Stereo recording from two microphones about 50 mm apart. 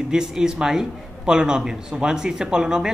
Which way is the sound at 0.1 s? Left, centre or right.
Centre.